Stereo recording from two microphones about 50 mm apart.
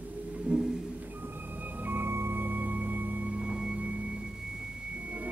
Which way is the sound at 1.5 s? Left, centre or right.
Right.